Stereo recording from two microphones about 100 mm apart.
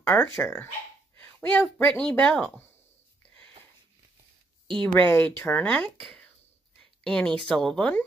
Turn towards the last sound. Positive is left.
turn(degrees=5)  # may be behind; listen again after turning